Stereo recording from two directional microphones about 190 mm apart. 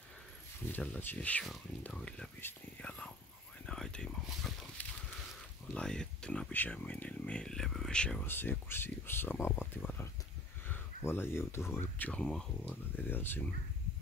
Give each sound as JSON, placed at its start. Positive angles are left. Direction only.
{"t": 0.7, "sound": "speech", "side_deg": 10}